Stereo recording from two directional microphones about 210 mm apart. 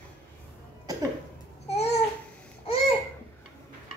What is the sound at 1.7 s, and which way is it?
Babbling, 30° left (ahead or behind).